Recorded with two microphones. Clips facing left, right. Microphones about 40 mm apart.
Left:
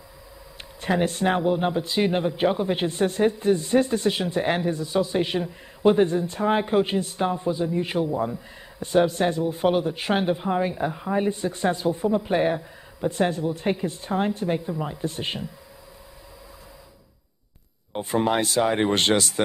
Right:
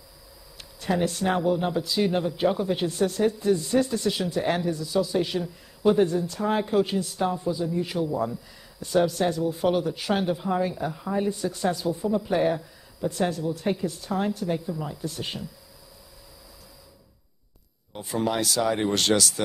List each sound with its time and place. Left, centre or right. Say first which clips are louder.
0.6 s a man's voice: left 2 dB; left
17.9 s a man's voice: left 4 dB; left